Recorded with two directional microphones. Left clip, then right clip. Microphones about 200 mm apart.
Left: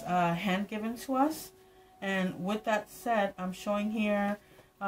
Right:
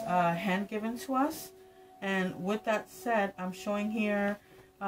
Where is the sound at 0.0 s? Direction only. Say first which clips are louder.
Right 1 dB; 10° left (ahead or behind).